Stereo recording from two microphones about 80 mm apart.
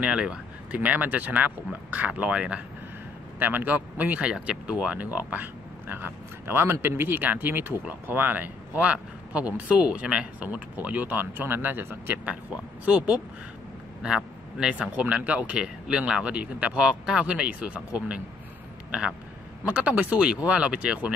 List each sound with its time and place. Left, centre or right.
0.0 s speech: centre; by 12.2 s right
12.3 s speech: centre